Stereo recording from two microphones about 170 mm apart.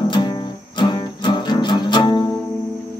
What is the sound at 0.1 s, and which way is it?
Music, 25° left (ahead or behind).